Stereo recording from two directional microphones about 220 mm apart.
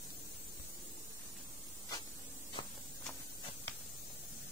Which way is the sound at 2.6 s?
20° left (ahead or behind).